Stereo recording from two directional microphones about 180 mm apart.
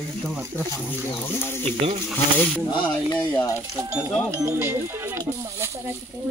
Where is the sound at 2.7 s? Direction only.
20° left (ahead or behind).